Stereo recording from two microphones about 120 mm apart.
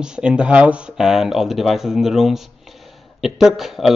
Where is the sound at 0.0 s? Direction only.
5° right (ahead or behind).